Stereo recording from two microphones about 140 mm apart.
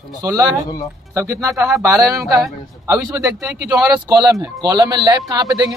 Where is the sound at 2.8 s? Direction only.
20° right (ahead or behind).